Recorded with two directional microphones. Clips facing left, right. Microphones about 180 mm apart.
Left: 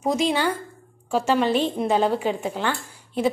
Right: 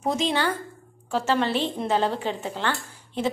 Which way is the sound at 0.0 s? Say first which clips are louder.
Left 3 dB; 10° left (ahead or behind).